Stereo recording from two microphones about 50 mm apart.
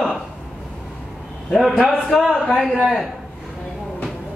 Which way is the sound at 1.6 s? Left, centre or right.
Centre.